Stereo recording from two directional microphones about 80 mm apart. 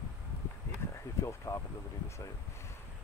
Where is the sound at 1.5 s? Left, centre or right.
Left.